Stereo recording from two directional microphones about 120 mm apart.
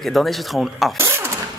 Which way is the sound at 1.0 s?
20° right (ahead or behind).